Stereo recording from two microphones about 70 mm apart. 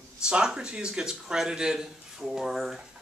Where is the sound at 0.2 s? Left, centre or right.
Centre.